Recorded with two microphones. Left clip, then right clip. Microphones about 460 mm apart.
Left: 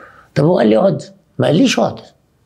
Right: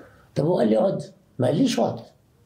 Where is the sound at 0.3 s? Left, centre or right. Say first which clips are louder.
Left 9 dB; left.